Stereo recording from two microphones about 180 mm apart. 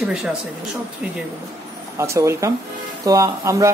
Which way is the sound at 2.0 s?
15° right (ahead or behind).